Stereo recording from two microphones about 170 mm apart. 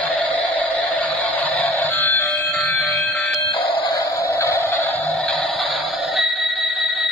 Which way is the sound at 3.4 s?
30° left (ahead or behind).